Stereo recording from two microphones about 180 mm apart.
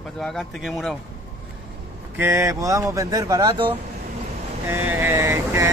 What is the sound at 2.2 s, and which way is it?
Speech, 15° right (ahead or behind).